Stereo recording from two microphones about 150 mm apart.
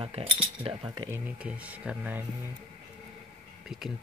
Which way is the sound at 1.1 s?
10° right (ahead or behind).